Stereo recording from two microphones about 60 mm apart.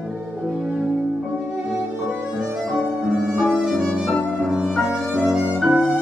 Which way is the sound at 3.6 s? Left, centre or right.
Centre.